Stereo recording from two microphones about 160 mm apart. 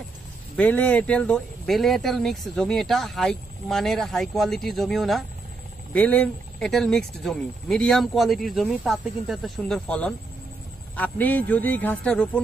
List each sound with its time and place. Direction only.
0.6 s speech: 10° left (ahead or behind)